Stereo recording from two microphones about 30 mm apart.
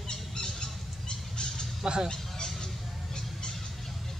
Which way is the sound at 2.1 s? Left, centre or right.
Centre.